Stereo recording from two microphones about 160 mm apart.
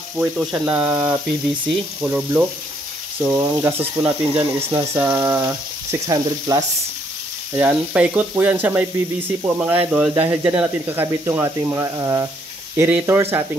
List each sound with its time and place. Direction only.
0.1 s speech: 5° right (ahead or behind)
7.5 s speech: 10° right (ahead or behind)